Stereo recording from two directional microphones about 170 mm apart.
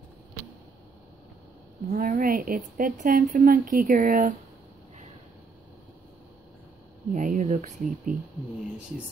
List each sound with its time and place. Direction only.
1.9 s speech: 55° right (ahead or behind)
7.1 s speech: 50° right (ahead or behind)